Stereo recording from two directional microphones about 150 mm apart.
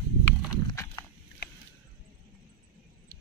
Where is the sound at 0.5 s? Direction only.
25° left (ahead or behind).